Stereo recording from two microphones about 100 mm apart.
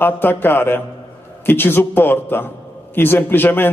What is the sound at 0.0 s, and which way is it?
A man's voice, 20° left (ahead or behind).